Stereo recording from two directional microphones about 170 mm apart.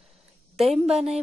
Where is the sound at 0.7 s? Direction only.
5° right (ahead or behind).